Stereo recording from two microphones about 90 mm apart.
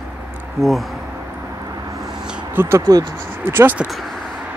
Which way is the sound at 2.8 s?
45° right (ahead or behind).